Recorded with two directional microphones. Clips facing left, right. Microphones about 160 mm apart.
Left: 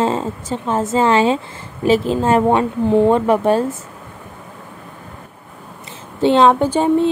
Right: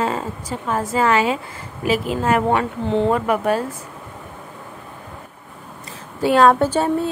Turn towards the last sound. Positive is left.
turn(degrees=15)  # may be behind; listen again after turning